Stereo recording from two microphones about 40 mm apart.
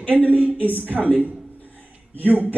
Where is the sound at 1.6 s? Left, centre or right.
Right.